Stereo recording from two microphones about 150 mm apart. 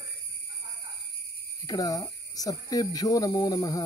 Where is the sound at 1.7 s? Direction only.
25° left (ahead or behind).